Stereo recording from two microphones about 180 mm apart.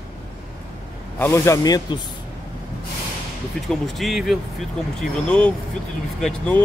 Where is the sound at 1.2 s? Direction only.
15° left (ahead or behind).